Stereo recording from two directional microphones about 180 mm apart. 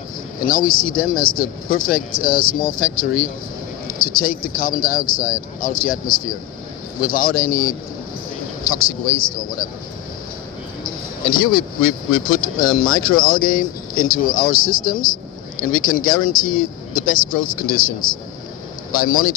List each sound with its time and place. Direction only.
0.4 s speech: 50° left (ahead or behind)
10.8 s speech: 50° left (ahead or behind)